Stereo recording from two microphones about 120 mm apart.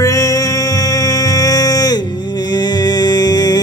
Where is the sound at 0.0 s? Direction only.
30° left (ahead or behind).